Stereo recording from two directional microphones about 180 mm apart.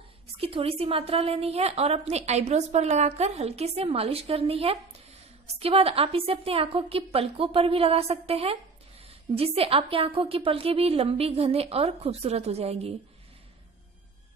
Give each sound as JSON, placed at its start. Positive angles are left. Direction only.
{"t": 0.4, "sound": "a woman's voice", "side_deg": -30}